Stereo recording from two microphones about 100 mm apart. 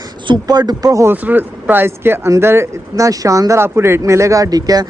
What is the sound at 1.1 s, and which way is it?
Speech, 20° right (ahead or behind).